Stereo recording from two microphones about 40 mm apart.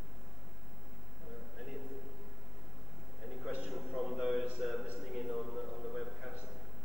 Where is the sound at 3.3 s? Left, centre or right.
Centre.